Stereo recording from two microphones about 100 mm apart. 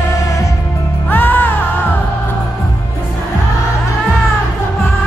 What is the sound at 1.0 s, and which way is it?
Music, 20° left (ahead or behind).